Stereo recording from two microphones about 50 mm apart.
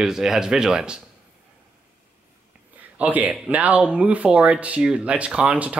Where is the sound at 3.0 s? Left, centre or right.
Right.